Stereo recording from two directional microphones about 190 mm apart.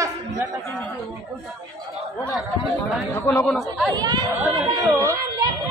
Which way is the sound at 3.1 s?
15° left (ahead or behind).